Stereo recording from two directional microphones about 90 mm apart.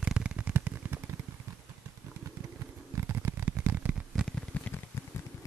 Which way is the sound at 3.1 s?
25° right (ahead or behind).